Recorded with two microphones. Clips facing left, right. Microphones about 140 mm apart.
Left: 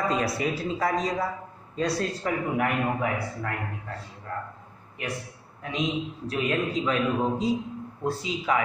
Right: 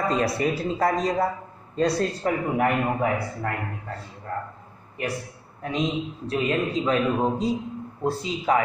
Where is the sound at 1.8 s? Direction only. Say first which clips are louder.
Right 4 dB; 40° right (ahead or behind).